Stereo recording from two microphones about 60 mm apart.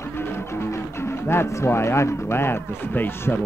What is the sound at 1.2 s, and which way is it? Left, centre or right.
Speech, left.